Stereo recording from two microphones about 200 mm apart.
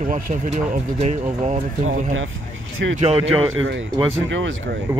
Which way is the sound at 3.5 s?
75° right (ahead or behind).